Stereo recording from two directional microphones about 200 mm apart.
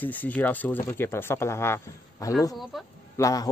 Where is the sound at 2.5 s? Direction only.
Centre (ahead or behind).